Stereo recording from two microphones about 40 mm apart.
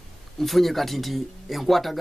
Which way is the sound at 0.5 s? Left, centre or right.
Centre.